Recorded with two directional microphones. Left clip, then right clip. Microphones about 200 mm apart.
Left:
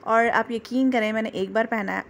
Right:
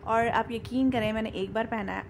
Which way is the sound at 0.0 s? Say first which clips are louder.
Left 5 dB; 20° left (ahead or behind).